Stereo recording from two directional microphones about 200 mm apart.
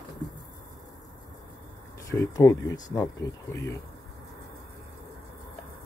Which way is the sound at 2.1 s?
15° left (ahead or behind).